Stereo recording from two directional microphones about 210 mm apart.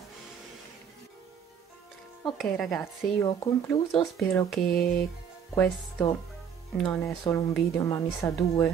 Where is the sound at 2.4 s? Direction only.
Centre (ahead or behind).